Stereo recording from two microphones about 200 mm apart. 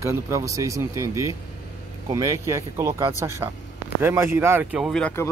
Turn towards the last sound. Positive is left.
turn(degrees=10)  # may be behind; listen again after turning